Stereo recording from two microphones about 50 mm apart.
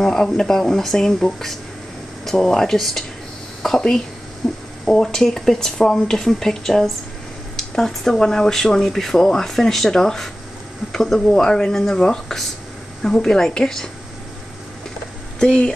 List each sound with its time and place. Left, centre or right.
0.0 s a woman's voice: centre
4.4 s speech: centre
15.3 s speech: centre